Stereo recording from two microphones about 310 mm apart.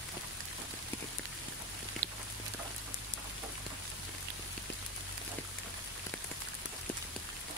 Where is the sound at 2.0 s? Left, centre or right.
Right.